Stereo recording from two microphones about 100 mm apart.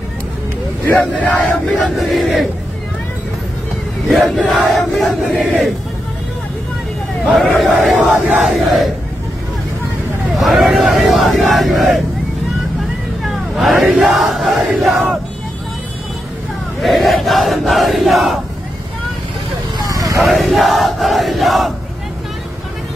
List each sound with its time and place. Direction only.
0.8 s speech: 15° left (ahead or behind)
1.8 s speech: centre (ahead or behind)
4.1 s speech: centre (ahead or behind)
7.2 s speech: centre (ahead or behind)
10.3 s speech: centre (ahead or behind)
13.2 s crowd: centre (ahead or behind)
16.8 s speech: centre (ahead or behind)
19.8 s vehicle: 35° right (ahead or behind)
20.2 s speech: centre (ahead or behind)